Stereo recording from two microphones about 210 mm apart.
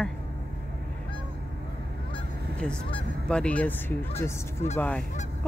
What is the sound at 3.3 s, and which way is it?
Speech, 5° left (ahead or behind).